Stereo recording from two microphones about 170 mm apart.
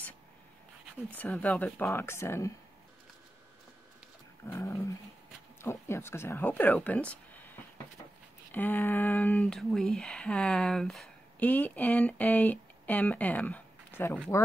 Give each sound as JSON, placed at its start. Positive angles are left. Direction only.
{"t": 1.1, "sound": "speech", "side_deg": 10}
{"t": 4.5, "sound": "dog", "side_deg": 20}
{"t": 5.6, "sound": "speech", "side_deg": 15}
{"t": 8.5, "sound": "speech", "side_deg": 10}